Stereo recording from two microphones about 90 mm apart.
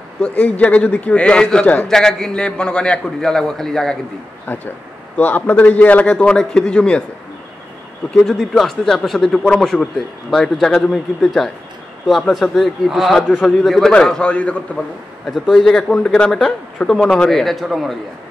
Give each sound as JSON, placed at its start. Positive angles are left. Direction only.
{"t": 0.2, "sound": "a man's voice", "side_deg": 15}
{"t": 4.5, "sound": "a man's voice", "side_deg": 20}
{"t": 8.1, "sound": "a man's voice", "side_deg": 0}